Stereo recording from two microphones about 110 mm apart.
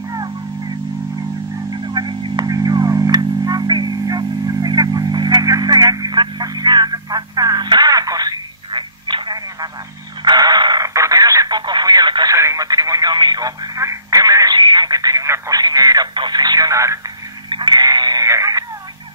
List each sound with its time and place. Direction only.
1.7 s guitar: 40° right (ahead or behind)
10.2 s radio: 40° right (ahead or behind)
12.4 s radio: 30° right (ahead or behind)
17.5 s a sound: 45° right (ahead or behind)